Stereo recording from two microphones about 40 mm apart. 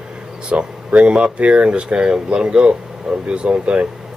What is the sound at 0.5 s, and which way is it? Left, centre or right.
Speech, right.